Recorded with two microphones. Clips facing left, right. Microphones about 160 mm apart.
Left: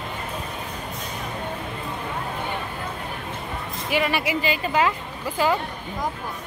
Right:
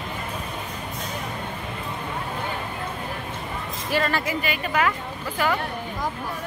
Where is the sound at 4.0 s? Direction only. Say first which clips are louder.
Left 2 dB; 15° left (ahead or behind).